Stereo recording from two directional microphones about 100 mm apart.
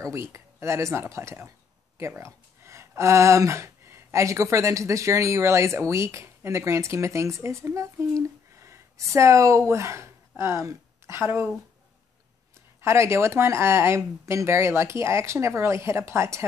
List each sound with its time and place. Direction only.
0.0 s a woman's voice: 30° right (ahead or behind)
12.8 s speech: 25° right (ahead or behind)